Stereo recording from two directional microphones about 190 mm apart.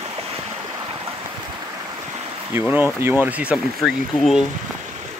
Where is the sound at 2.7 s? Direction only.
10° right (ahead or behind).